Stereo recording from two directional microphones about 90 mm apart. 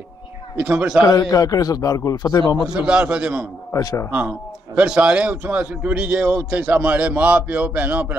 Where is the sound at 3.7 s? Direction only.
35° left (ahead or behind).